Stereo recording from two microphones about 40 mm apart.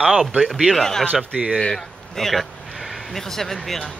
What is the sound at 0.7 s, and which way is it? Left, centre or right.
Speech, centre.